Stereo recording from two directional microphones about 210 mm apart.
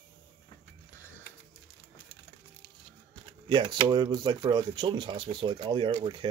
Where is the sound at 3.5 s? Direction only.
20° right (ahead or behind).